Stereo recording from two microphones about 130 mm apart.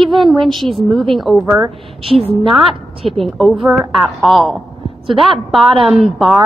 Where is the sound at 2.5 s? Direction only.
Centre (ahead or behind).